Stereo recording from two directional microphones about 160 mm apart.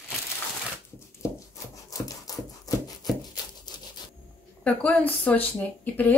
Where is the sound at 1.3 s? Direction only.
20° left (ahead or behind).